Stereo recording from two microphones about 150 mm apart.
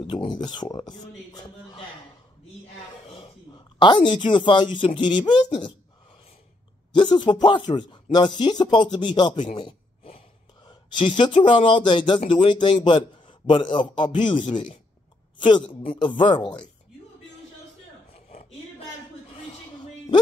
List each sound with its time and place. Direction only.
0.0 s speech: 35° left (ahead or behind)
3.1 s speech: 35° left (ahead or behind)
6.9 s speech: 30° left (ahead or behind)
9.6 s a sound: 35° left (ahead or behind)
12.3 s a woman's voice: 30° left (ahead or behind)
18.1 s a sound: 45° left (ahead or behind)